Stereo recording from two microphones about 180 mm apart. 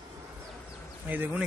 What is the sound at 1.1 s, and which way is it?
Speech, 10° right (ahead or behind).